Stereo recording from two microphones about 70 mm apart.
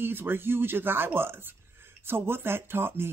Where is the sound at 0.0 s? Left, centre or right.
Right.